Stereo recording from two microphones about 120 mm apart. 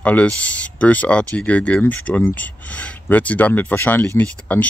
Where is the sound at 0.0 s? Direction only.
10° left (ahead or behind).